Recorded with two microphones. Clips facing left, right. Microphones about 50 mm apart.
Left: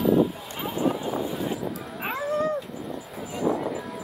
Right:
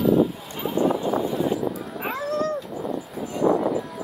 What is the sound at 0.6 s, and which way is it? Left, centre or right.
Dog, centre.